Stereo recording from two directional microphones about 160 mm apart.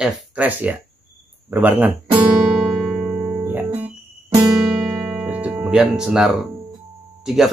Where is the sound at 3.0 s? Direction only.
5° right (ahead or behind).